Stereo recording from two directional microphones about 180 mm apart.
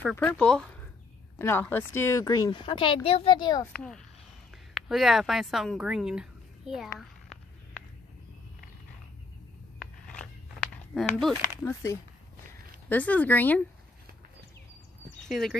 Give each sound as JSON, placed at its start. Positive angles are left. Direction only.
{"t": 0.0, "sound": "speech", "side_deg": 10}
{"t": 3.7, "sound": "speech", "side_deg": 5}
{"t": 9.8, "sound": "a sound", "side_deg": 5}
{"t": 11.1, "sound": "speech", "side_deg": 0}
{"t": 12.9, "sound": "speech", "side_deg": 10}
{"t": 15.2, "sound": "speech", "side_deg": 0}